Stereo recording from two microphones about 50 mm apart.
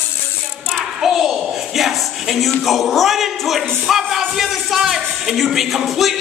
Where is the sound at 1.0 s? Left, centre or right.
Centre.